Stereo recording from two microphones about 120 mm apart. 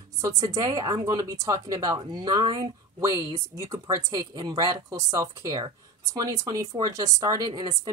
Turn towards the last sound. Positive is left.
turn(degrees=-35)  # may be behind; listen again after turning